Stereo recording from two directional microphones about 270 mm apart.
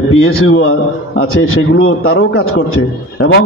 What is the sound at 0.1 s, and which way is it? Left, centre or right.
A man's voice, left.